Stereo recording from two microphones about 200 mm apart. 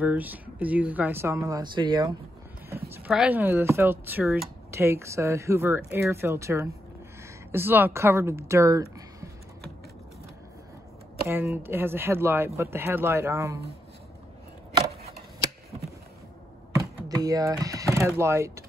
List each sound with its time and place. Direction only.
0.0 s speech: 10° right (ahead or behind)
2.9 s speech: 5° right (ahead or behind)
4.6 s speech: 15° right (ahead or behind)
11.4 s speech: 10° right (ahead or behind)
14.7 s chopping: 20° right (ahead or behind)
16.7 s speech: 20° right (ahead or behind)